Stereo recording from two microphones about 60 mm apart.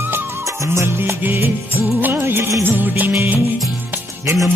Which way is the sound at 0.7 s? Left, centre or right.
Right.